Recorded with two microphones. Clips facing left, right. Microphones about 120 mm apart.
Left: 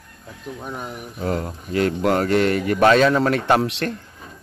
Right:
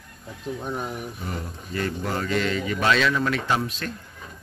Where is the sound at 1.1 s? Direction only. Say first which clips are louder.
Left 9 dB; 90° left; by 3.6 s 55° left (ahead or behind).